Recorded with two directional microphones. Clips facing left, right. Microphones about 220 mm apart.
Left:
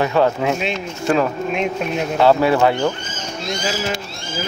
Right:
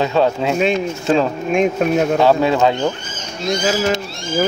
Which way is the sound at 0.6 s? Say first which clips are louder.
Right 7 dB; 50° right (ahead or behind).